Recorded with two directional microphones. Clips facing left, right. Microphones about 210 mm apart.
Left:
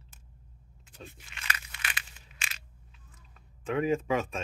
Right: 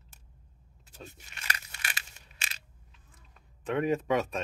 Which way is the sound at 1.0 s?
40° right (ahead or behind).